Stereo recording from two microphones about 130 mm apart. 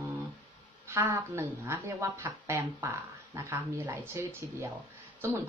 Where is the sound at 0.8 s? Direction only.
20° right (ahead or behind).